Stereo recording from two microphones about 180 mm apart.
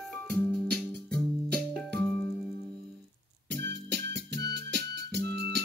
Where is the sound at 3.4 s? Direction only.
70° right (ahead or behind).